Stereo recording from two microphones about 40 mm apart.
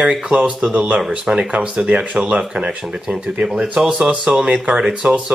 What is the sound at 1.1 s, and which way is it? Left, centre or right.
Speech, right.